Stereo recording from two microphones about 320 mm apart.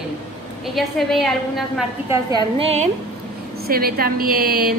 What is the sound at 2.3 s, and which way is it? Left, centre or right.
A woman's voice, centre.